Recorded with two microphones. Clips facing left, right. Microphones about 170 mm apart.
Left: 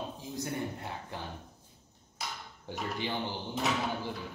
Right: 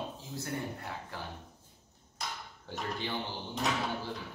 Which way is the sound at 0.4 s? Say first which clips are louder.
Left 4 dB; 20° left (ahead or behind).